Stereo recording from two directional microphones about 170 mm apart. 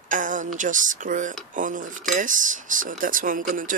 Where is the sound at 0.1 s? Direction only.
50° right (ahead or behind).